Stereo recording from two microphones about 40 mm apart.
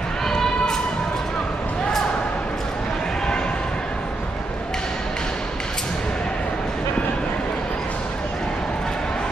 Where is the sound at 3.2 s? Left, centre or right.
Centre.